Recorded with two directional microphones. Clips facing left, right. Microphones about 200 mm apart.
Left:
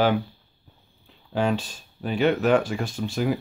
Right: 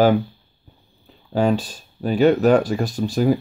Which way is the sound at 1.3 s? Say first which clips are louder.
Right 5 dB; 40° right (ahead or behind).